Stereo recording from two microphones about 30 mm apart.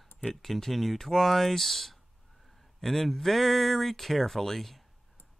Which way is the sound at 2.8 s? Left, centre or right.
Centre.